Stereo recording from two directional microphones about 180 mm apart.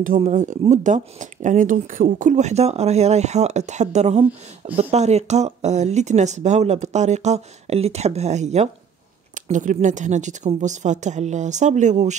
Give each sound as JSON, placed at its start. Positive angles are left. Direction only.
{"t": 0.0, "sound": "speech", "side_deg": -45}